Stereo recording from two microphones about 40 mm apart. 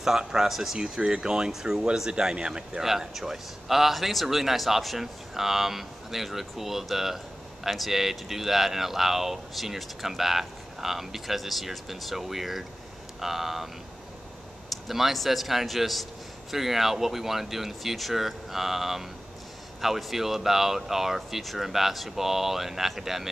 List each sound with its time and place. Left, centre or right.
0.2 s speech: centre
0.9 s speech: centre
2.8 s a man's voice: centre
14.9 s a man's voice: centre